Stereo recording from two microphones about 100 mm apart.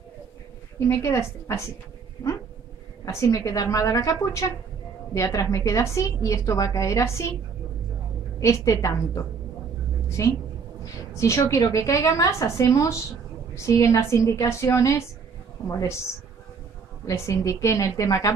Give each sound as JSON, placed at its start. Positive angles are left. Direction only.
{"t": 1.0, "sound": "a woman's voice", "side_deg": 30}
{"t": 3.1, "sound": "a woman's voice", "side_deg": 30}
{"t": 8.4, "sound": "a woman's voice", "side_deg": 30}
{"t": 17.0, "sound": "a woman's voice", "side_deg": 30}